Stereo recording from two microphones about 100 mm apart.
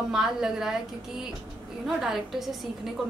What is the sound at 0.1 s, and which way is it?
A woman's voice, 5° right (ahead or behind).